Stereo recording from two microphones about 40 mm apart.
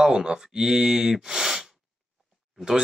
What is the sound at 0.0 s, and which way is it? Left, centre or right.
Speech, centre.